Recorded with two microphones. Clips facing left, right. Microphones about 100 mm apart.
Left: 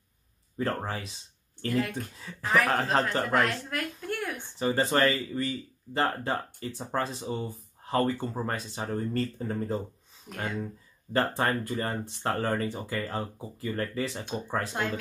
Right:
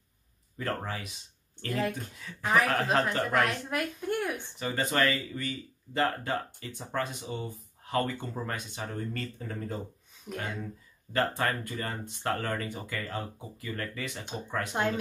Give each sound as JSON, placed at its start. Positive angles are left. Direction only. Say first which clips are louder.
{"t": 0.6, "sound": "speech", "louder": "left 3 dB", "side_deg": 30}
{"t": 1.7, "sound": "speech", "louder": "left 2 dB", "side_deg": -30}
{"t": 2.6, "sound": "speech", "louder": "left 1 dB", "side_deg": 30}
{"t": 3.7, "sound": "a sound", "louder": "right 2 dB", "side_deg": -15}
{"t": 4.6, "sound": "speech", "louder": "left 4 dB", "side_deg": 30}
{"t": 11.1, "sound": "speech", "louder": "left 2 dB", "side_deg": 25}
{"t": 14.7, "sound": "speech", "louder": "right 5 dB", "side_deg": -20}